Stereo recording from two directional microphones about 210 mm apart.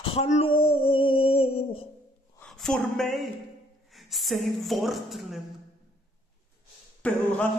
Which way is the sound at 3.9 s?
Centre (ahead or behind).